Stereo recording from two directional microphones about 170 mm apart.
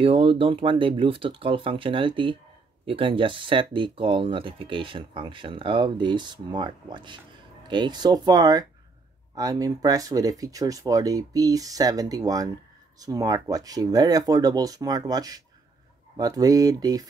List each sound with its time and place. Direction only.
0.0 s speech: 30° right (ahead or behind)